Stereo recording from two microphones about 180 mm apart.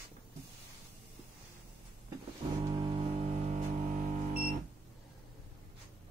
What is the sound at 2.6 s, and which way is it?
Music, 30° right (ahead or behind).